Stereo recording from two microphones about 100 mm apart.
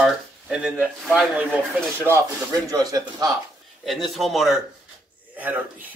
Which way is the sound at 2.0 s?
30° right (ahead or behind).